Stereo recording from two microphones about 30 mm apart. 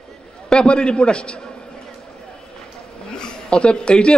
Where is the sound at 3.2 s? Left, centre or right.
Left.